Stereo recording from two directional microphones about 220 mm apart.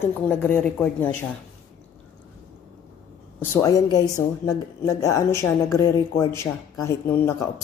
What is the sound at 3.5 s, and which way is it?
A woman's voice, 15° left (ahead or behind).